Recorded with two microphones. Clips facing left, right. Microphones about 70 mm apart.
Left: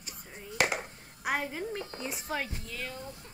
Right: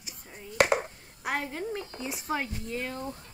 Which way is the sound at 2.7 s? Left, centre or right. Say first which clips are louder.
Right 6 dB; right.